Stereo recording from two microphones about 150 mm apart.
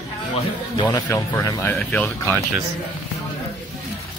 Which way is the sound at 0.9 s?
20° left (ahead or behind).